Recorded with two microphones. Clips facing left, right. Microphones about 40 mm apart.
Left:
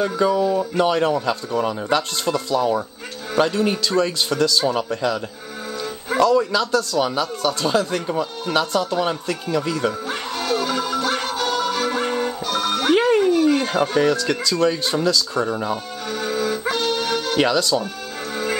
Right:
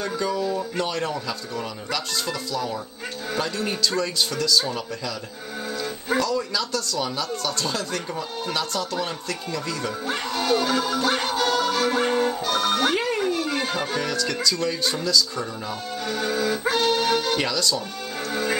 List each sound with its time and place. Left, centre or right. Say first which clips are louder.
0.0 s speech: left 7 dB; centre
6.1 s speech: left 8 dB; left
10.0 s music: even; centre
13.9 s speech: left 7 dB; centre
16.1 s music: left 2 dB; centre
17.4 s speech: left 6 dB; left
18.3 s music: left 1 dB; centre